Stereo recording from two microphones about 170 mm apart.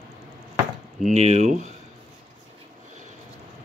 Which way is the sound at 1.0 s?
40° right (ahead or behind).